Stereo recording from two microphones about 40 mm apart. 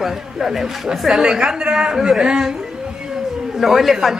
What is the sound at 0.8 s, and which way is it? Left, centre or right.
A woman's voice, centre.